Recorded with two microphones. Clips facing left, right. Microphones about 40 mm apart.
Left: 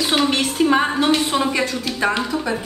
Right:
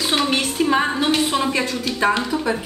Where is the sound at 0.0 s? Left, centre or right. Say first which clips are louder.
Left 1 dB; centre.